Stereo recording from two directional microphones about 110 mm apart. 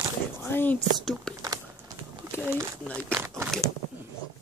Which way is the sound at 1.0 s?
Centre (ahead or behind).